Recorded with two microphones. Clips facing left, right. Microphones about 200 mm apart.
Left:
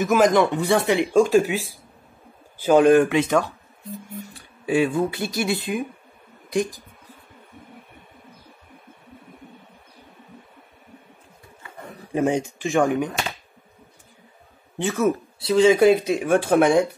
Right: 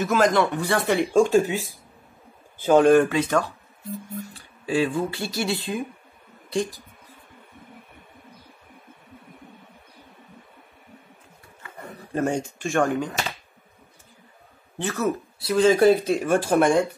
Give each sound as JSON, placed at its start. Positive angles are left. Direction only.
{"t": 0.0, "sound": "speech", "side_deg": 15}
{"t": 2.6, "sound": "speech", "side_deg": 10}
{"t": 4.6, "sound": "speech", "side_deg": 15}
{"t": 12.1, "sound": "speech", "side_deg": 15}
{"t": 14.8, "sound": "speech", "side_deg": 20}
{"t": 15.5, "sound": "speech", "side_deg": 10}